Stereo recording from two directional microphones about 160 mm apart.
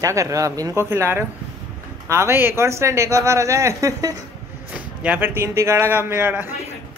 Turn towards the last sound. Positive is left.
turn(degrees=-15)  # may be behind; listen again after turning